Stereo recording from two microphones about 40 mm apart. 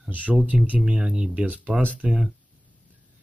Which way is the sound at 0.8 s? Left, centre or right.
Right.